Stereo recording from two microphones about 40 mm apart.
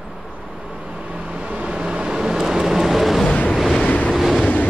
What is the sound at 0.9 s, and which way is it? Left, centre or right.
Vehicle, right.